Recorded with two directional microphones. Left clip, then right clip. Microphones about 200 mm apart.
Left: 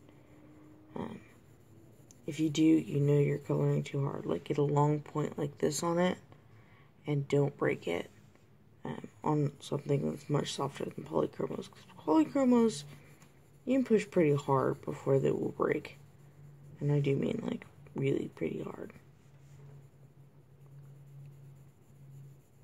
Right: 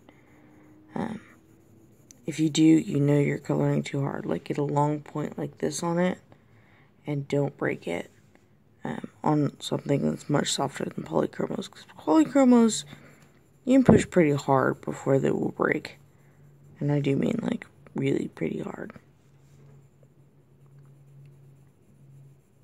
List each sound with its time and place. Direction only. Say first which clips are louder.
0.9 s a sound: right 8 dB; 35° right (ahead or behind)
2.0 s speech: right 6 dB; 30° right (ahead or behind); by 8.1 s 15° right (ahead or behind)
8.8 s speech: right 7 dB; 30° right (ahead or behind)